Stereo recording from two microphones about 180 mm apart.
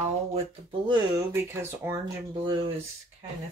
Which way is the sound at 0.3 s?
30° right (ahead or behind).